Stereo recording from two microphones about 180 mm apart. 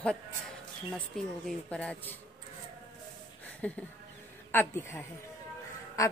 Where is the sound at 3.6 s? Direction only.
5° left (ahead or behind).